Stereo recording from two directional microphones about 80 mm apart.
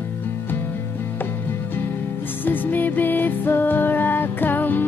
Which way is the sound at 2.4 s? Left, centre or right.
Left.